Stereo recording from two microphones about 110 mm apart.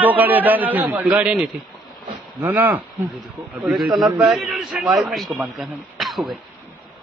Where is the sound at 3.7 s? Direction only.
Centre (ahead or behind).